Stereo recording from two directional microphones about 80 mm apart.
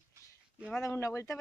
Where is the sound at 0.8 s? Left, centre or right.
Left.